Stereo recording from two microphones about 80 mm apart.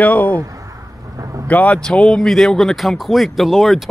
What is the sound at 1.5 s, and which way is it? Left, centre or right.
Speech, centre.